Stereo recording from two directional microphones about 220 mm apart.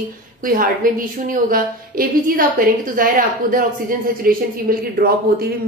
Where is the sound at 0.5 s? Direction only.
40° right (ahead or behind).